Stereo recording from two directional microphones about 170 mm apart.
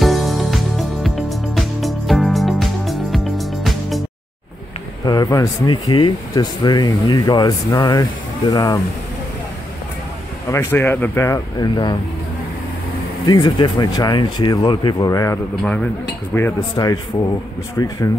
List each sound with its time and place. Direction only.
0.0 s music: centre (ahead or behind)
5.0 s speech: 20° left (ahead or behind)
10.5 s speech: 15° left (ahead or behind)
13.3 s speech: 25° left (ahead or behind)
15.6 s speech: 5° left (ahead or behind)
16.3 s speech: 15° left (ahead or behind)